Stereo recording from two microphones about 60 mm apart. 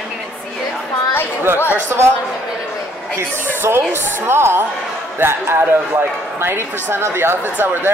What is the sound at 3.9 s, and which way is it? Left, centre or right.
Speech, right.